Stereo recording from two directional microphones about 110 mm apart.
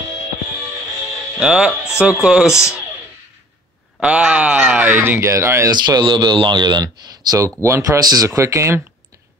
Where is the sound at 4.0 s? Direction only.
10° right (ahead or behind).